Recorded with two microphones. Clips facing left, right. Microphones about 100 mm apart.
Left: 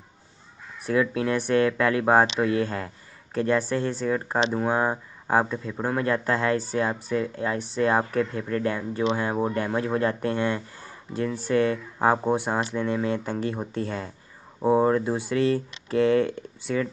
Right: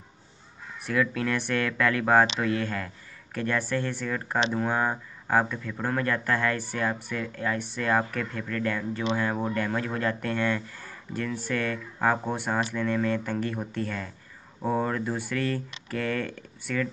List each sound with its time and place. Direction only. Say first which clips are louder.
0.8 s speech: left 3 dB; 20° left (ahead or behind)